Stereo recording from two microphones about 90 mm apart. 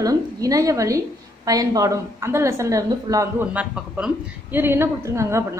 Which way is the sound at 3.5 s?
15° right (ahead or behind).